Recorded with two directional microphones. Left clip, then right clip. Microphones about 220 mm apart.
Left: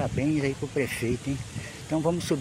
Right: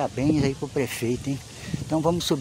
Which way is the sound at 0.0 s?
20° right (ahead or behind).